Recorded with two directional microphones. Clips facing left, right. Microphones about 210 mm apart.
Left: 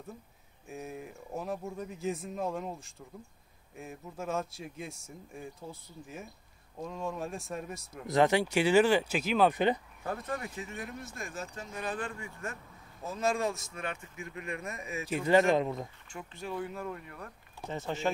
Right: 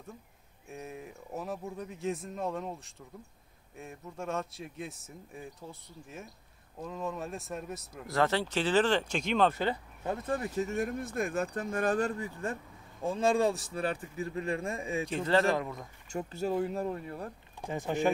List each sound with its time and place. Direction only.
0.7 s speech: centre (ahead or behind)
8.1 s speech: 15° left (ahead or behind)
9.5 s speech: 20° left (ahead or behind)
10.0 s a man's voice: 25° right (ahead or behind)
15.0 s speech: 10° left (ahead or behind)
16.1 s a man's voice: 40° right (ahead or behind)
17.6 s speech: 15° right (ahead or behind)